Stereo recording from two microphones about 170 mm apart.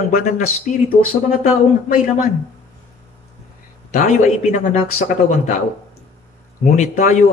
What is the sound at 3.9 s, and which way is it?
A man's voice, 45° left (ahead or behind).